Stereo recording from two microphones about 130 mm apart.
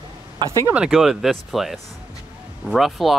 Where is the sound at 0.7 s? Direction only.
5° right (ahead or behind).